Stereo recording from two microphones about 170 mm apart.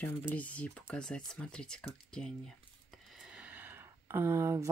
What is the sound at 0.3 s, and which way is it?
Speech, 10° left (ahead or behind).